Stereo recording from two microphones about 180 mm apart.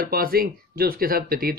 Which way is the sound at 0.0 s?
55° right (ahead or behind).